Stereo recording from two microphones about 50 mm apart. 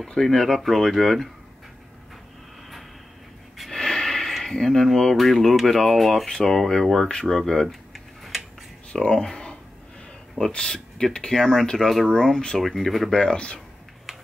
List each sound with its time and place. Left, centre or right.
0.1 s speech: centre
3.5 s speech: centre
7.6 s tick-tock: centre
9.0 s speech: centre
10.6 s speech: centre
13.1 s speech: centre